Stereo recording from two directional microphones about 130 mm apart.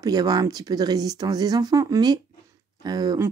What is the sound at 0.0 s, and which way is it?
Speech, 30° right (ahead or behind).